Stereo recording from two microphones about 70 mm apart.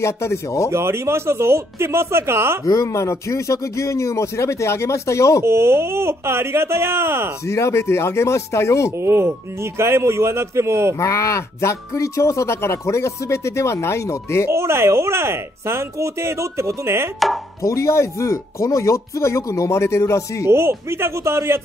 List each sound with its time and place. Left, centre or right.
0.0 s speech: left
0.7 s speech: right
2.6 s speech: left
5.4 s speech: right
7.4 s speech: left
9.0 s speech: right
11.0 s speech: left
14.5 s speech: right
17.6 s speech: left
20.4 s speech: right